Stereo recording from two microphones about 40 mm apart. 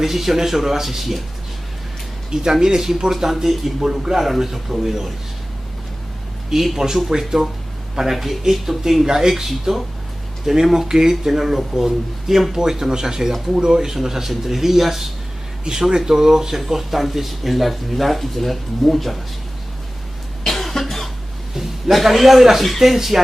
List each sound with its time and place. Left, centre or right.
0.0 s speech: centre
2.5 s speech: centre
6.5 s speech: centre
20.4 s cough: centre
21.5 s a man's voice: centre